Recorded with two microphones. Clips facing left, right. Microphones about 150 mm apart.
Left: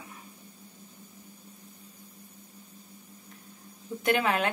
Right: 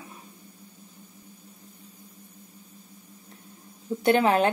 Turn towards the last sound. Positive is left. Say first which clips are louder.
# right 6 dB
turn(degrees=-35)  # may be behind; listen again after turning